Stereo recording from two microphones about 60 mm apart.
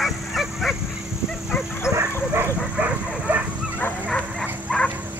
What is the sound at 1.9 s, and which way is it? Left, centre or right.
Bow-wow, centre.